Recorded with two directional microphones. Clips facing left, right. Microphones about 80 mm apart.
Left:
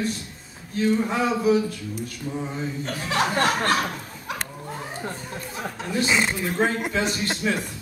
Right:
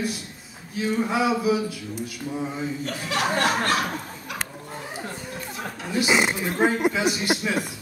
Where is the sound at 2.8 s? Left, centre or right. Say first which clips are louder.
Left 3 dB; left.